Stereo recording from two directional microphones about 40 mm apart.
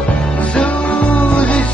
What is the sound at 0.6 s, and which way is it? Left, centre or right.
Music, left.